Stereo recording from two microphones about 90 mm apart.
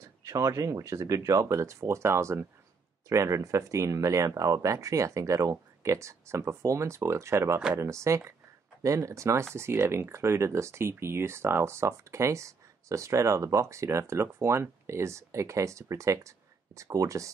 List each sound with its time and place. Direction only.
0.2 s speech: 35° right (ahead or behind)